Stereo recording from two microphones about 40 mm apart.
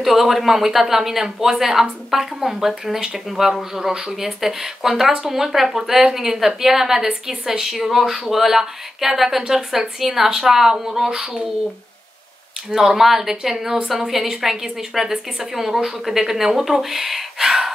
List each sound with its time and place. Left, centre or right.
0.0 s speech: centre
12.7 s speech: centre